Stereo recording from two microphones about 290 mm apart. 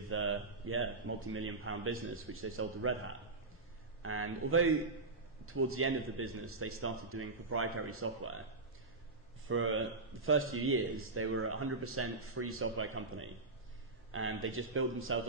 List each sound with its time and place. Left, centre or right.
0.1 s a man's voice: right
9.5 s a man's voice: right